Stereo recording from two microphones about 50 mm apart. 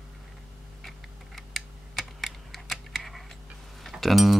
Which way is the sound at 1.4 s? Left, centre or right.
Centre.